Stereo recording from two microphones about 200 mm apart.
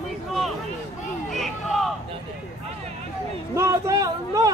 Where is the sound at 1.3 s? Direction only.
Centre (ahead or behind).